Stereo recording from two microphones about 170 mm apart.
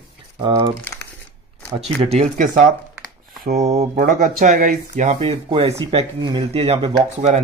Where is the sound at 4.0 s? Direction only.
55° right (ahead or behind).